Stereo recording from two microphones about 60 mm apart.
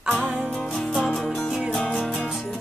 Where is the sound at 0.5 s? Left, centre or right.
Centre.